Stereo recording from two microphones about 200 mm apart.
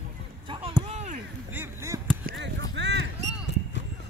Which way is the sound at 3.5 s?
60° left (ahead or behind).